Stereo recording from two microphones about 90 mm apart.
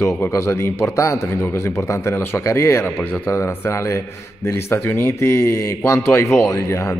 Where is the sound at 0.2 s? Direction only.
35° left (ahead or behind).